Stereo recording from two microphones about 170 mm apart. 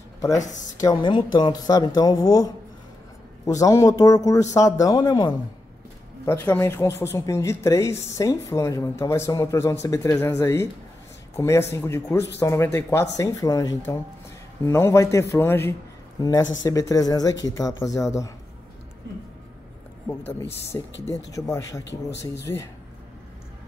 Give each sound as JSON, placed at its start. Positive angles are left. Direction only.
{"t": 0.7, "sound": "speech", "side_deg": 25}
{"t": 20.1, "sound": "speech", "side_deg": 15}